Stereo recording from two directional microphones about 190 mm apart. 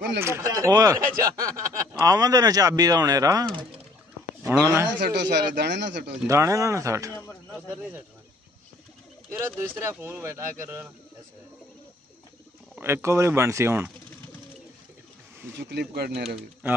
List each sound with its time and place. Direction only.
0.2 s speech: 15° right (ahead or behind)
4.9 s speech: 65° right (ahead or behind)
6.2 s speech: 15° right (ahead or behind)
7.1 s speech: 10° left (ahead or behind)
9.3 s speech: 10° right (ahead or behind)
12.7 s speech: 10° right (ahead or behind)
15.5 s speech: 60° right (ahead or behind)